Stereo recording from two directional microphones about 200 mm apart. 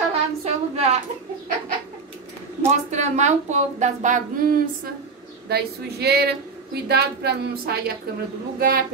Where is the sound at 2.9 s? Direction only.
35° right (ahead or behind); by 7.9 s 50° right (ahead or behind).